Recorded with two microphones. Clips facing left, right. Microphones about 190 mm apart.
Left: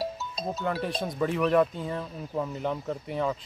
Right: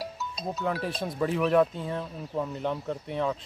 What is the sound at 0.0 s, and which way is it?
Music, 25° left (ahead or behind).